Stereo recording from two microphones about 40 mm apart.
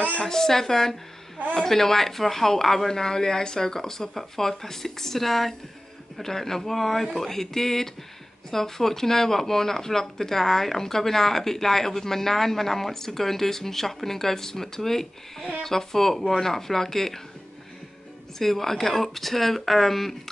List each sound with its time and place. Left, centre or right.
0.2 s speech: centre
18.4 s speech: centre